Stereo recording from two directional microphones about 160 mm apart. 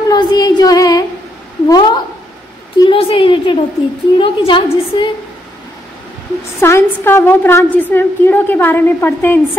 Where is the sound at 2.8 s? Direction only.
35° left (ahead or behind).